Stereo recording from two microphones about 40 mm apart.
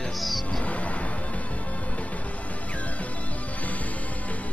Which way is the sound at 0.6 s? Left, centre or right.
Left.